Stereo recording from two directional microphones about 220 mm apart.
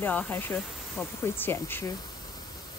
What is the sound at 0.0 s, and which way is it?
Speech, 10° left (ahead or behind).